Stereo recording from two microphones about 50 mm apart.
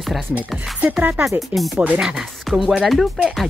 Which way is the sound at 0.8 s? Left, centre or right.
Right.